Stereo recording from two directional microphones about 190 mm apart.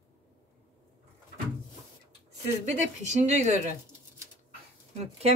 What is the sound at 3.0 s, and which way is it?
Speech, 40° right (ahead or behind).